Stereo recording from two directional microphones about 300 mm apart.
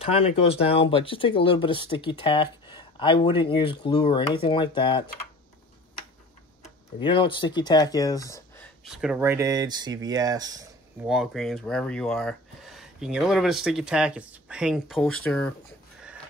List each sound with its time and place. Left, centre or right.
0.0 s speech: centre
7.0 s speech: centre
8.8 s speech: centre
11.1 s speech: centre